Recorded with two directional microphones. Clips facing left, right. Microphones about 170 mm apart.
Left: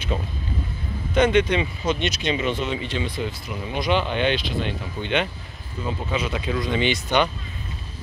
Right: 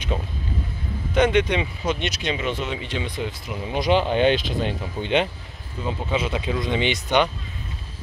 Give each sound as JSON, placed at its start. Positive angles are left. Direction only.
{"t": 1.1, "sound": "speech", "side_deg": -15}
{"t": 3.7, "sound": "speech", "side_deg": -35}